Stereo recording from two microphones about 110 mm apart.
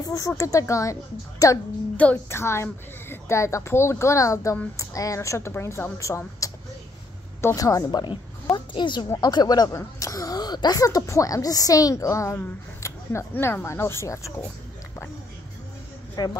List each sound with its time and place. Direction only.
0.0 s a sound: 30° left (ahead or behind)
0.4 s speech: 30° left (ahead or behind)
2.2 s a woman's voice: 25° left (ahead or behind)
8.5 s a woman's voice: 45° left (ahead or behind); by 14.3 s 25° left (ahead or behind)
16.2 s a woman's voice: 35° left (ahead or behind)